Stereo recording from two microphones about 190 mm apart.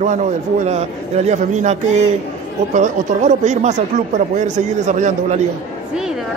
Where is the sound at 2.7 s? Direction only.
40° right (ahead or behind).